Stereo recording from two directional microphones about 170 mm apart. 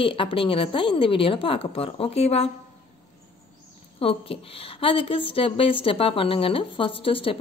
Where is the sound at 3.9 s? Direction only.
35° left (ahead or behind).